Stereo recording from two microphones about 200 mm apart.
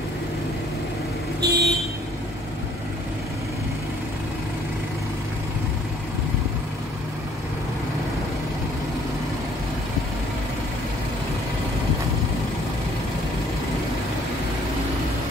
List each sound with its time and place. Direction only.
1.4 s vehicle: 55° right (ahead or behind)